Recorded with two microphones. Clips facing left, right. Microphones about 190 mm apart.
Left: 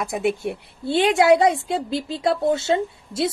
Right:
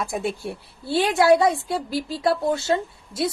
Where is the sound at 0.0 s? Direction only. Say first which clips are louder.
Left 4 dB; 20° left (ahead or behind).